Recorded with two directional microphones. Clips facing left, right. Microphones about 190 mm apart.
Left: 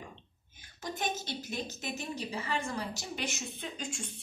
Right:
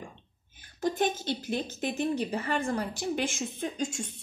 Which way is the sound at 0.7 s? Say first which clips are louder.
Right 8 dB; 50° right (ahead or behind).